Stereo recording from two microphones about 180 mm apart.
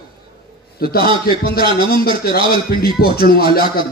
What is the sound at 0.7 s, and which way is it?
A man's voice, 60° left (ahead or behind).